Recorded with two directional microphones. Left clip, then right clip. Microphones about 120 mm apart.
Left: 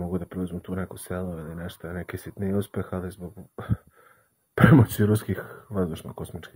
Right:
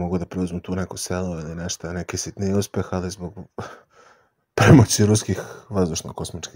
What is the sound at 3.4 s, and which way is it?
Sigh, 40° right (ahead or behind).